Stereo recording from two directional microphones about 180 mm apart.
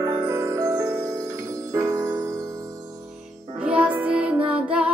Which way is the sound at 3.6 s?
5° right (ahead or behind).